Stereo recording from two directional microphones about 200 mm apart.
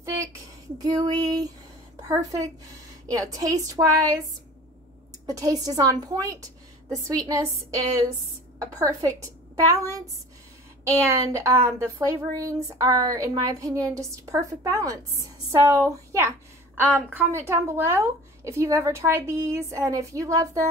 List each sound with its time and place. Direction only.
0.0 s a sound: 15° right (ahead or behind)
0.8 s female singing: 20° right (ahead or behind)
2.0 s a woman's voice: 20° right (ahead or behind)
5.2 s a woman's voice: 20° right (ahead or behind)